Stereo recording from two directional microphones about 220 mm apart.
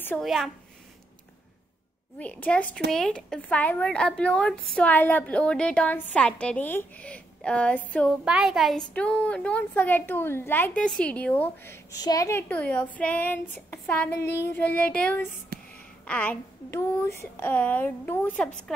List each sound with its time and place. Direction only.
0.0 s a woman's voice: 5° left (ahead or behind)
2.1 s a woman's voice: 5° left (ahead or behind)
15.5 s a sound: 45° right (ahead or behind)
16.1 s a woman's voice: 5° left (ahead or behind)